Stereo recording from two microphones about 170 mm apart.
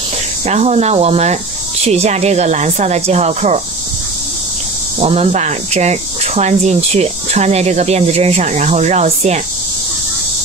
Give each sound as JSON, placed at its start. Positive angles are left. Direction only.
{"t": 0.5, "sound": "speech", "side_deg": -40}
{"t": 5.0, "sound": "speech", "side_deg": -40}